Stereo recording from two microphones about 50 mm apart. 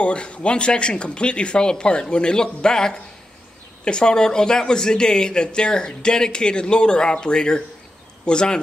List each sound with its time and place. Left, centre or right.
0.0 s speech: left